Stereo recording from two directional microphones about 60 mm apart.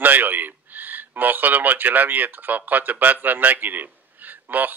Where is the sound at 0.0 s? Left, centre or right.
Right.